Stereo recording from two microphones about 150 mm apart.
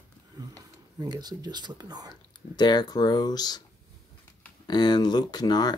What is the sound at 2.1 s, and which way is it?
Speech, 30° left (ahead or behind).